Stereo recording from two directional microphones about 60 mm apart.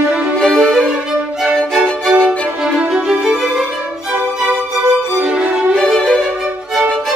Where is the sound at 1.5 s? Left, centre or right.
Centre.